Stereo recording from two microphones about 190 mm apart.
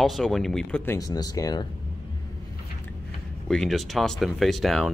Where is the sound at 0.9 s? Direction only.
20° left (ahead or behind).